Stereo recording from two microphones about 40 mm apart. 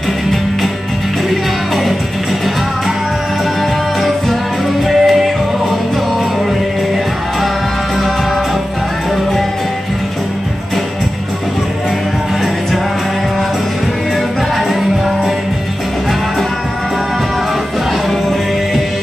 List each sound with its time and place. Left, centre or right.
4.8 s music: centre
14.7 s music: centre